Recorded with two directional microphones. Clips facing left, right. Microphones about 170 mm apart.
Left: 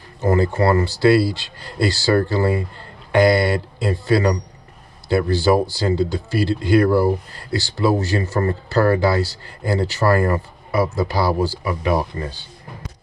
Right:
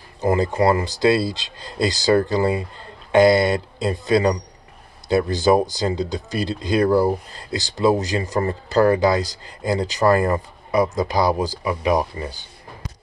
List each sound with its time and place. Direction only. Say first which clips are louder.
0.2 s speech: left 1 dB; 15° right (ahead or behind)